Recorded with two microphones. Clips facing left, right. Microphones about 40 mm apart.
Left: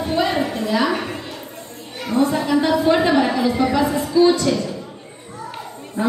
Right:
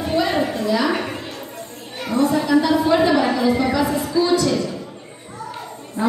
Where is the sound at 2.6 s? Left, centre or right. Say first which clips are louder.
Even; left.